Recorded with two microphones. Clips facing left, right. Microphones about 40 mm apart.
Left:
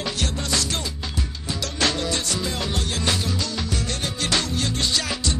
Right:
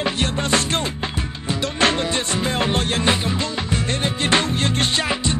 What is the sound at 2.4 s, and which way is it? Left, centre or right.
Music, right.